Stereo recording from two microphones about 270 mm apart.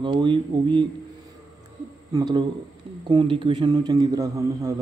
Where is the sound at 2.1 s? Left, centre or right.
Centre.